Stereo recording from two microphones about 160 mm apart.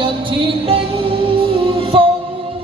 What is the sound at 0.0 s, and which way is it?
Music, 30° right (ahead or behind).